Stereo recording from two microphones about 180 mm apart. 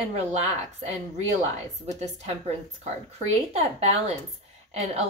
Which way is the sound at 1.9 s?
40° right (ahead or behind).